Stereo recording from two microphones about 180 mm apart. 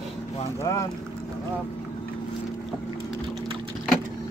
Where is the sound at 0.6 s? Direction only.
20° left (ahead or behind).